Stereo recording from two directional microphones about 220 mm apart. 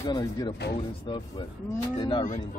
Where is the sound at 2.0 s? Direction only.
20° left (ahead or behind).